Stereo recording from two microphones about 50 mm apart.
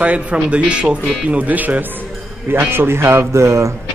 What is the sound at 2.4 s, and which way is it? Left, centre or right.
A man's voice, right.